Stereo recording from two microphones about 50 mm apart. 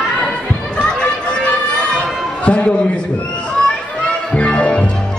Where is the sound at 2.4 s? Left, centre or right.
Left.